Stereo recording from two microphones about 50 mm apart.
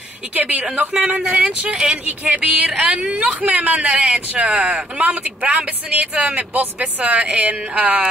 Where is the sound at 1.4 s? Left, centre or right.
Right.